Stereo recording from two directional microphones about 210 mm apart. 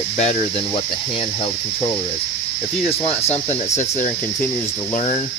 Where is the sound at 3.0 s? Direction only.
30° left (ahead or behind).